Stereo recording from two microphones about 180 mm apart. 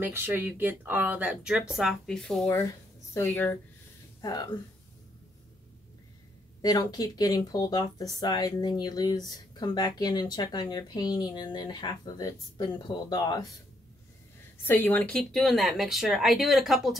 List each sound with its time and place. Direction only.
0.0 s speech: 10° right (ahead or behind); by 3.5 s 10° left (ahead or behind)
4.2 s speech: 20° left (ahead or behind)
6.6 s speech: 20° left (ahead or behind)
14.6 s speech: 10° left (ahead or behind)